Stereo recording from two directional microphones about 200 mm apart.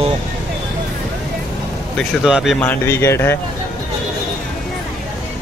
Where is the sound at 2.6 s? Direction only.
10° left (ahead or behind).